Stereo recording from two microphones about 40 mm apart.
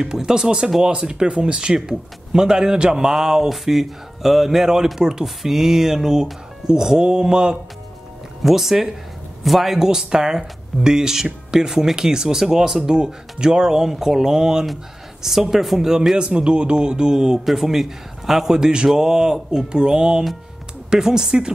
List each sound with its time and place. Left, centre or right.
0.0 s speech: centre
8.4 s speech: centre
9.8 s speech: centre
16.2 s speech: right
17.5 s speech: centre